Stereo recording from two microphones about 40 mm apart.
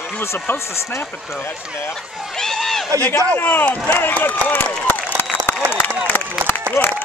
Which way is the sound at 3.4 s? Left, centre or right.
Left.